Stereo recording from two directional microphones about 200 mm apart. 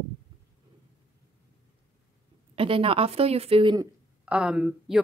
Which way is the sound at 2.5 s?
25° right (ahead or behind).